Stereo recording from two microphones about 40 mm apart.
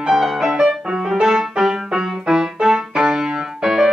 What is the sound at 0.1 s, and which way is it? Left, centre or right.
Music, centre.